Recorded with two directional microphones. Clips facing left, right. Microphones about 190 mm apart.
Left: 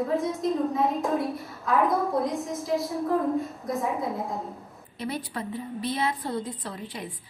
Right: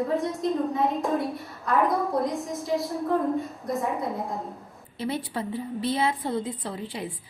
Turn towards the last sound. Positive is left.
turn(degrees=-25)  # may be behind; listen again after turning